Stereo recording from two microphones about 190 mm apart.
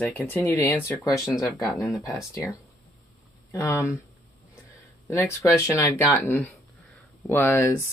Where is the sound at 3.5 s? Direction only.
15° left (ahead or behind).